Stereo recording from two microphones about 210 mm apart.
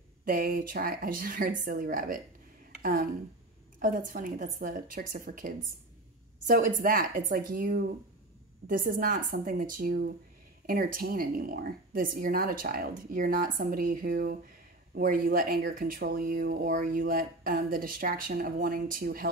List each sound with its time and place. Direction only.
0.2 s a woman's voice: 40° right (ahead or behind)